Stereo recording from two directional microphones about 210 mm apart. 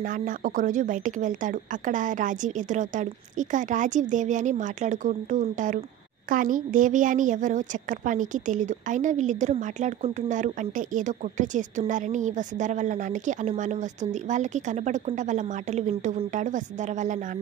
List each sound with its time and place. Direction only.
0.0 s a woman's voice: 40° right (ahead or behind)